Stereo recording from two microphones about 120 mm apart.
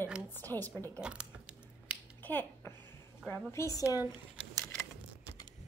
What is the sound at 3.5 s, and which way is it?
Speech, 25° left (ahead or behind).